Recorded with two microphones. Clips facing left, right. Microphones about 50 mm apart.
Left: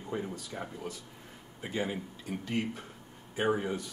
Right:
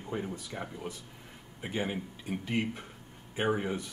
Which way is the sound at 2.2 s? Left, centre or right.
Right.